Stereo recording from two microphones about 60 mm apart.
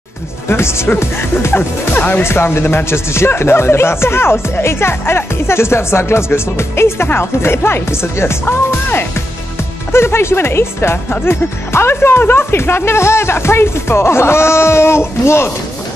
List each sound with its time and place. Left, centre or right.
0.5 s speech: left